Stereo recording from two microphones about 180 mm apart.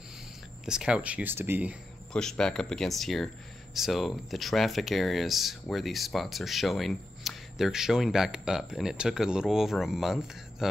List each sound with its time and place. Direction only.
0.7 s speech: 5° right (ahead or behind)
2.1 s speech: 5° left (ahead or behind)